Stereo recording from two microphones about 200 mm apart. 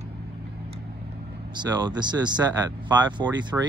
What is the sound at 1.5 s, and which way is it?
Speech, 20° right (ahead or behind).